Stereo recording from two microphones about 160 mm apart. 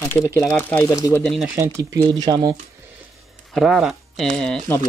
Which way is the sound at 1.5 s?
15° right (ahead or behind).